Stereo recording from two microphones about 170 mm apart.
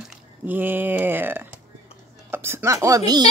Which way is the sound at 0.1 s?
10° right (ahead or behind).